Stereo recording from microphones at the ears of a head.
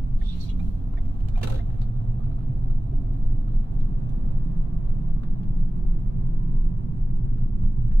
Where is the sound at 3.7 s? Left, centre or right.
Right.